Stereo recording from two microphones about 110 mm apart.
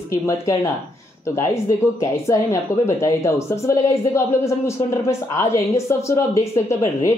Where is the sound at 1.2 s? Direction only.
25° left (ahead or behind).